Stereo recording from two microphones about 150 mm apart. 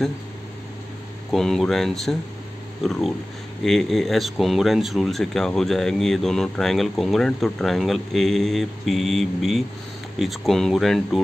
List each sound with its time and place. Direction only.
1.3 s speech: 5° left (ahead or behind)